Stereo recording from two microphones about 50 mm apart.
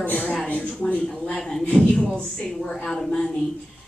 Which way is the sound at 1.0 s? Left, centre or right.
Centre.